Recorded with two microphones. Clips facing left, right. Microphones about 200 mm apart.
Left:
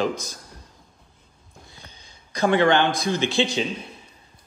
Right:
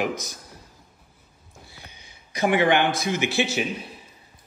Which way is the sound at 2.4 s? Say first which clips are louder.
Left 1 dB; 15° right (ahead or behind).